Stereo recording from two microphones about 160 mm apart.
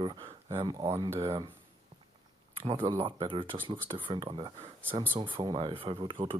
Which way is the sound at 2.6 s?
30° right (ahead or behind).